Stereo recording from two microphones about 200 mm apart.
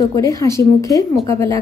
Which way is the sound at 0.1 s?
15° left (ahead or behind).